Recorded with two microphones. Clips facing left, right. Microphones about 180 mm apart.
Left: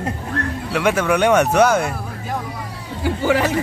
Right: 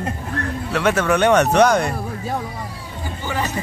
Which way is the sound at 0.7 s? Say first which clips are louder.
Even; 10° left (ahead or behind).